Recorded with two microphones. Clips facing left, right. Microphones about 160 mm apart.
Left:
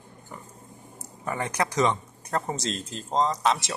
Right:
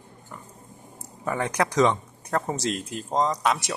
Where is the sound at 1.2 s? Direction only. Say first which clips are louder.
Right 3 dB; 15° left (ahead or behind).